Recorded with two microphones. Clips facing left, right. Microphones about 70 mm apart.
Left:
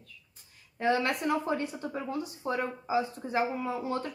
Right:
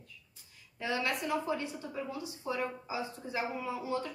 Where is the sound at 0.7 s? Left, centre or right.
Left.